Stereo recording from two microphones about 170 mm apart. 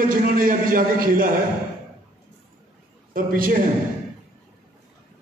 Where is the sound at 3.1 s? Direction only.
55° right (ahead or behind).